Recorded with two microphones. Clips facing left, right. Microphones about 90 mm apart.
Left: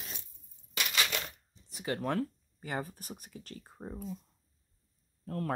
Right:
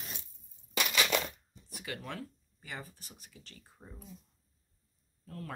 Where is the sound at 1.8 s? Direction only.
40° left (ahead or behind).